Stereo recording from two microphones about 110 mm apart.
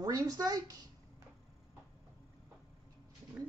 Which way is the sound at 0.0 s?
35° right (ahead or behind).